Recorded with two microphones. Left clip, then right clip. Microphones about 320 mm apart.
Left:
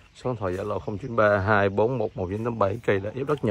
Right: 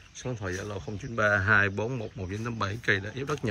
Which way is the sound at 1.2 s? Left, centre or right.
Centre.